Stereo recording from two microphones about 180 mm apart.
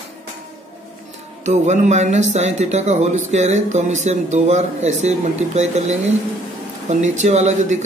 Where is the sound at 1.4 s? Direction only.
40° right (ahead or behind).